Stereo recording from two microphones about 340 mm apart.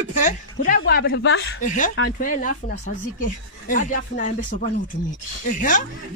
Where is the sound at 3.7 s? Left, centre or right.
Left.